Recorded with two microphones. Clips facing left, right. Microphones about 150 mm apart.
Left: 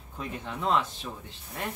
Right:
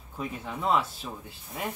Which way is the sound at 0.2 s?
5° right (ahead or behind).